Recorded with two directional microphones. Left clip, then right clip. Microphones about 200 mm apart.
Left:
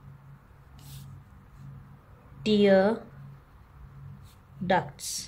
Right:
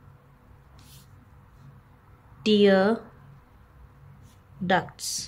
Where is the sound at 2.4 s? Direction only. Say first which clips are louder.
Right 2 dB; 20° right (ahead or behind).